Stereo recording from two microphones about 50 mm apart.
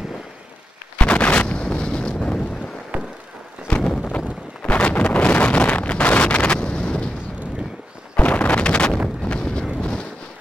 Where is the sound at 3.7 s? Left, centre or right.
Left.